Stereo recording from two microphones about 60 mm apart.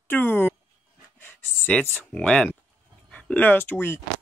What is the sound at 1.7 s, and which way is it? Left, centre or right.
Speech, left.